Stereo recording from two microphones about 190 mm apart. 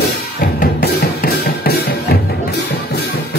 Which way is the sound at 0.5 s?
55° left (ahead or behind).